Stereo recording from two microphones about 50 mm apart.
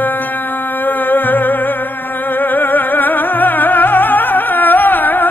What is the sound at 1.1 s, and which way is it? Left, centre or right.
Music, left.